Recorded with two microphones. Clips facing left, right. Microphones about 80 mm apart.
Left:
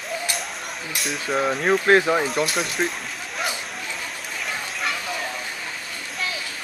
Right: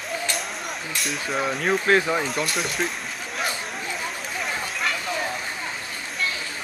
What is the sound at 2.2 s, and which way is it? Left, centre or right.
Speech, centre.